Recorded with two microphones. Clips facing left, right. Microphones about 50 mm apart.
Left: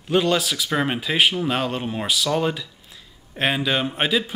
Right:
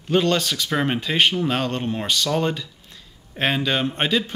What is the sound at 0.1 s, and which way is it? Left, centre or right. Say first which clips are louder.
Speech: even; centre.